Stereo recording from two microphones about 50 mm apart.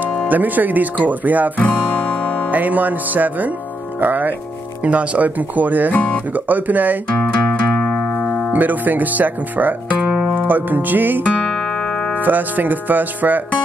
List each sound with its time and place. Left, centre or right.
0.3 s speech: right
1.7 s music: centre
2.5 s speech: right
5.9 s speech: left
6.3 s speech: right
7.4 s music: left
7.9 s music: centre
8.5 s speech: right
11.4 s music: centre
12.2 s speech: right